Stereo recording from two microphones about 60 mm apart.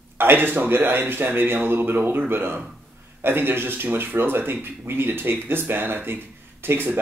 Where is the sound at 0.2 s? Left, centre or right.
Right.